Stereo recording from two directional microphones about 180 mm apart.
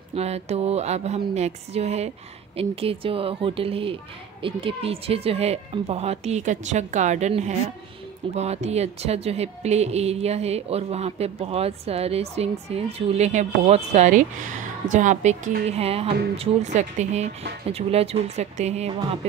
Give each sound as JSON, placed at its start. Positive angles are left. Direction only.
{"t": 0.1, "sound": "speech", "side_deg": -35}